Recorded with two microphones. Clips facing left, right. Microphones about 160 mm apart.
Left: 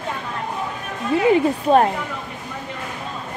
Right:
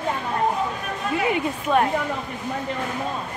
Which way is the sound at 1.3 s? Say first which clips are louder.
Left 6 dB; 35° left (ahead or behind).